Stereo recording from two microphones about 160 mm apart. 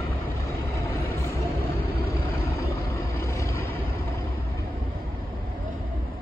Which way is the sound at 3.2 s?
20° left (ahead or behind).